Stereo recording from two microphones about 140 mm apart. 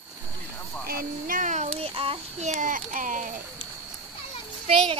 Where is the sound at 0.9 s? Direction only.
85° right; by 2.5 s 40° right (ahead or behind).